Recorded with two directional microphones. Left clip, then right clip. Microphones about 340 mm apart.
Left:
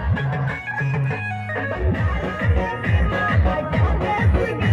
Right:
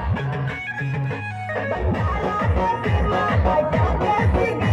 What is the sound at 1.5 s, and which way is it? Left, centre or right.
Music, right.